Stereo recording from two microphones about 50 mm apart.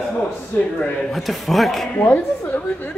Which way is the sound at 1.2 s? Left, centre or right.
Centre.